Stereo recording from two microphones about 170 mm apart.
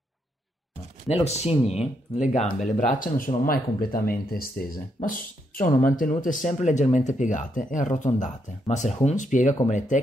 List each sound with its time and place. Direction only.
1.0 s speech: 40° left (ahead or behind)